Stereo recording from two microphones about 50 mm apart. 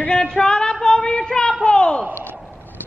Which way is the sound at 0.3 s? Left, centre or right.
Centre.